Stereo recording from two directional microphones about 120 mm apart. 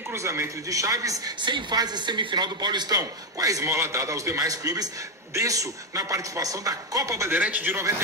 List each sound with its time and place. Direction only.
0.1 s a man's voice: 25° right (ahead or behind)
7.3 s a man's voice: 15° right (ahead or behind)